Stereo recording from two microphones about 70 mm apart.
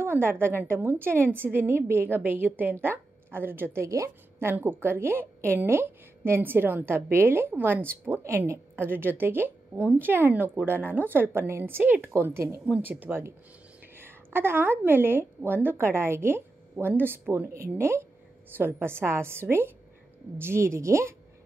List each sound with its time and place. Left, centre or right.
0.0 s a woman's voice: right
3.8 s speech: right
4.4 s a woman's voice: right
8.2 s a woman's voice: right
12.6 s a woman's voice: right